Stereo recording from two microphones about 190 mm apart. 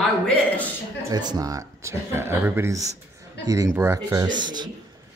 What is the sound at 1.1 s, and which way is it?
Speech, 20° right (ahead or behind).